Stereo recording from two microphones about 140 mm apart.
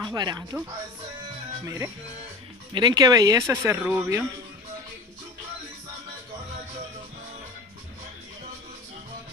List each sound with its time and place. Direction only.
0.0 s speech: 30° right (ahead or behind)
1.6 s speech: 25° right (ahead or behind)